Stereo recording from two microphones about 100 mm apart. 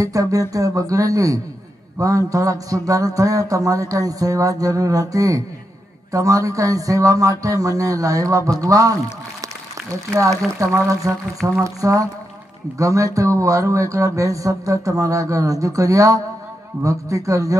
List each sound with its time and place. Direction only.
0.0 s speech: 35° right (ahead or behind)
10.1 s speech: 30° right (ahead or behind)